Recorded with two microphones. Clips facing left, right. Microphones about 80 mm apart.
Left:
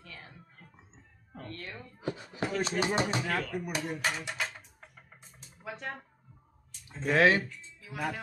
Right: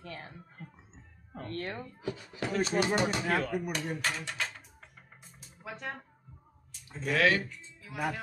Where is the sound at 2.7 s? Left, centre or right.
Right.